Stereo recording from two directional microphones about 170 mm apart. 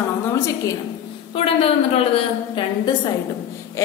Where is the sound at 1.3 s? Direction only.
35° left (ahead or behind).